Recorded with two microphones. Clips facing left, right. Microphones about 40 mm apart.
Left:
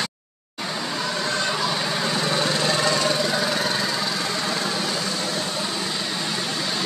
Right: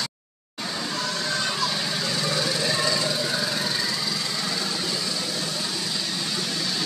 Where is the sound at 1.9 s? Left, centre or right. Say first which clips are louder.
Left 3 dB; left.